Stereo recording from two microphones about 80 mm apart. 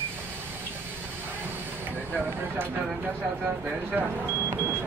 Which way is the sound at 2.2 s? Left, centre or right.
Right.